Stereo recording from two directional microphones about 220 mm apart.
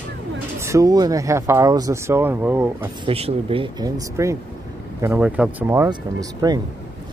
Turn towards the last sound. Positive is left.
turn(degrees=-15)  # may be behind; listen again after turning